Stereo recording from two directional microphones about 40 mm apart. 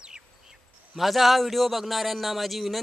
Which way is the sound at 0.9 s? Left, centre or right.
Centre.